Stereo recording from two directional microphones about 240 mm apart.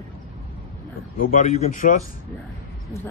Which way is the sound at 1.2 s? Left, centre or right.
Left.